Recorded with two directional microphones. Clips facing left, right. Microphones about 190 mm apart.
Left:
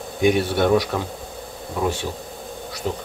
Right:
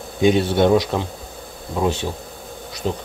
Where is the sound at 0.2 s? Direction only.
20° right (ahead or behind).